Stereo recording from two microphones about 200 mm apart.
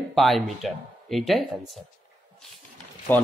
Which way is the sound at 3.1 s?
10° left (ahead or behind).